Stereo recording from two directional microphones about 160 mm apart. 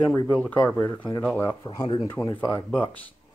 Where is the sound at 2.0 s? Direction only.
15° left (ahead or behind).